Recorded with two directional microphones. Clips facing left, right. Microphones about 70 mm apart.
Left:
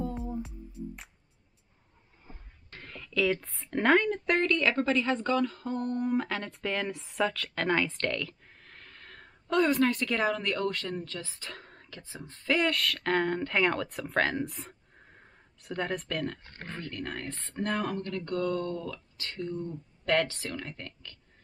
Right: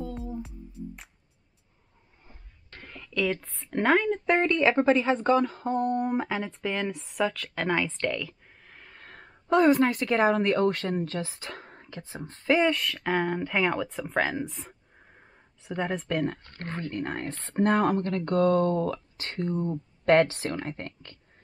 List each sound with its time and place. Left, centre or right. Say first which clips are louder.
2.8 s speech: even; centre
4.3 s speech: right 5 dB; right
6.1 s speech: right 2 dB; centre
8.9 s a sound: right 2 dB; right
9.9 s speech: right 6 dB; right
12.5 s speech: right 3 dB; centre
16.1 s speech: right 5 dB; right